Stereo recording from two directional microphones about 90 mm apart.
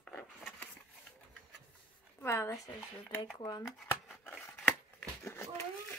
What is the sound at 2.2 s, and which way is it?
Speech, 30° left (ahead or behind).